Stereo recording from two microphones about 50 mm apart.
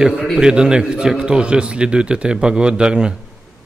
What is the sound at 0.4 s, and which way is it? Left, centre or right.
A man's voice, centre.